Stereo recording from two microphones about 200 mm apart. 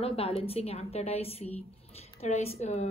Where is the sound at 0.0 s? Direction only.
30° left (ahead or behind).